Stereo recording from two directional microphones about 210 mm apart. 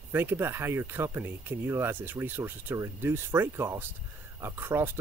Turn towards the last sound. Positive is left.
turn(degrees=-10)  # may be behind; listen again after turning